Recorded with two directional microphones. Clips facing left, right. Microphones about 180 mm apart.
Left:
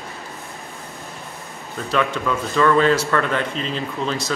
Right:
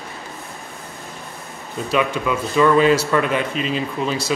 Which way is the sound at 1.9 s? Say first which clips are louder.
Right 1 dB; 15° right (ahead or behind).